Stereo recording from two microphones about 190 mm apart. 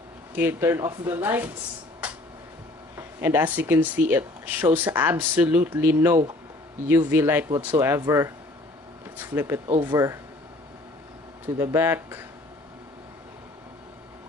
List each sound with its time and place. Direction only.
0.3 s speech: 10° right (ahead or behind)
3.0 s speech: 10° right (ahead or behind)
9.8 s speech: 20° right (ahead or behind)
11.5 s speech: 15° right (ahead or behind)